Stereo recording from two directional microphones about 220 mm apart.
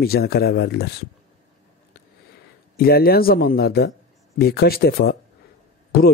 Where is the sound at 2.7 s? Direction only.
45° left (ahead or behind).